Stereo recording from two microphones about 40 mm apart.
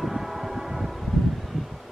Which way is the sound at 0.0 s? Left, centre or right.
Centre.